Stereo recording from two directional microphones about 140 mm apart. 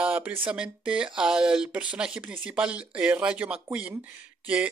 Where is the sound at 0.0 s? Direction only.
10° right (ahead or behind).